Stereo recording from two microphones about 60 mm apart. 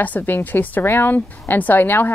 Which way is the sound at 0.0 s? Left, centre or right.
Left.